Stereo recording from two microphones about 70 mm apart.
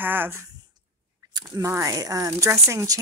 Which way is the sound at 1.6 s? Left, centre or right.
Right.